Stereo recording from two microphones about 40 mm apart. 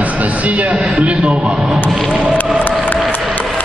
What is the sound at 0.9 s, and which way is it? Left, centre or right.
Speech, right.